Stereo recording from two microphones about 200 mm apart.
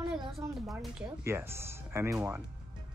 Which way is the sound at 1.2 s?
10° right (ahead or behind).